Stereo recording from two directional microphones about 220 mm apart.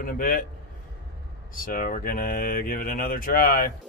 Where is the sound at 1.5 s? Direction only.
40° left (ahead or behind).